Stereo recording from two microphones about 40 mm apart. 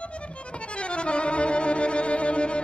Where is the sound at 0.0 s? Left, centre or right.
Left.